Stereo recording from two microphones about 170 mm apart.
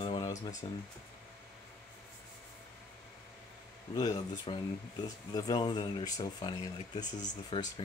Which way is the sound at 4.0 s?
25° left (ahead or behind).